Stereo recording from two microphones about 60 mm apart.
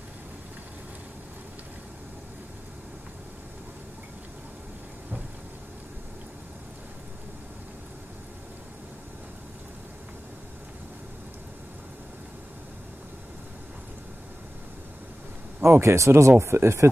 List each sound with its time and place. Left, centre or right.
15.6 s speech: right